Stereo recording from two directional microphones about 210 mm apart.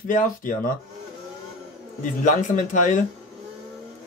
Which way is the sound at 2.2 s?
35° left (ahead or behind).